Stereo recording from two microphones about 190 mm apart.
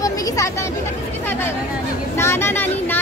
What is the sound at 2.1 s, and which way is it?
Speech, 15° left (ahead or behind).